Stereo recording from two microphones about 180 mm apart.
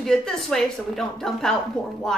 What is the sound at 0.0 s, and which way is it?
Speech, 5° left (ahead or behind).